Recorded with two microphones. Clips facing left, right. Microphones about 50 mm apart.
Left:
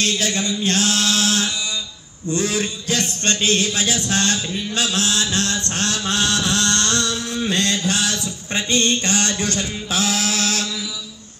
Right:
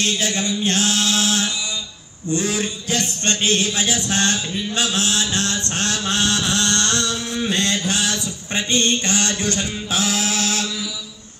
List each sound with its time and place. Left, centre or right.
0.0 s mantra: right